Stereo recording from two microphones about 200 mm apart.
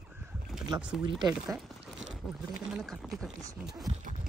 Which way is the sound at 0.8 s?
5° right (ahead or behind).